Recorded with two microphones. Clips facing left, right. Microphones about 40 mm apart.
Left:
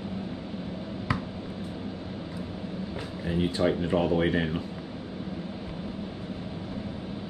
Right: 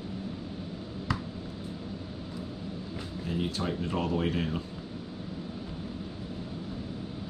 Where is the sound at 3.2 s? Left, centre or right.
Left.